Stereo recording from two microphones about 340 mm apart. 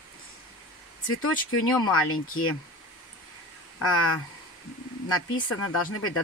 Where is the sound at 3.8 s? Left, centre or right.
Left.